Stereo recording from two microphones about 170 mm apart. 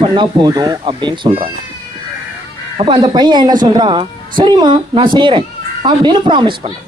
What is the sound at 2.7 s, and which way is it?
Speech, 30° right (ahead or behind).